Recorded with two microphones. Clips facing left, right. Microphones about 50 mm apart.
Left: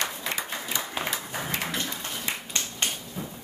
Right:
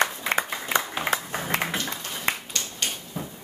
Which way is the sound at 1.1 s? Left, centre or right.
Right.